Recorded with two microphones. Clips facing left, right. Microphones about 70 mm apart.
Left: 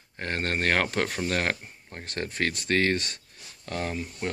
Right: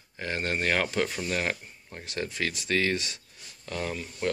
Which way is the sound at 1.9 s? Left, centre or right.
Left.